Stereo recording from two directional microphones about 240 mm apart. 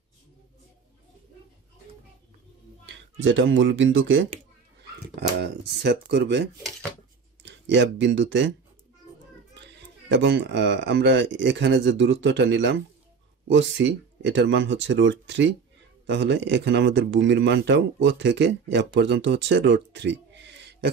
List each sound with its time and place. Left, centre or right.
2.9 s speech: right
5.4 s speech: right
7.4 s speech: right
9.7 s speech: right